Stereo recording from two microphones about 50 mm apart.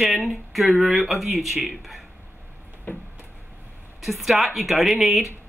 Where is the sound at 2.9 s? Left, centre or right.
Left.